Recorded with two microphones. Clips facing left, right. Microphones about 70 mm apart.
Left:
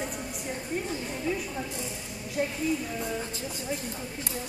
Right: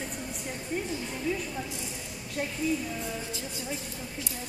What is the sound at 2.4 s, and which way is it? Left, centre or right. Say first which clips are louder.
Speech: left 4 dB; centre.